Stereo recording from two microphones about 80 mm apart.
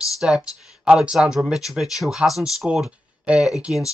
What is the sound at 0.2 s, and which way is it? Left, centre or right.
Speech, centre.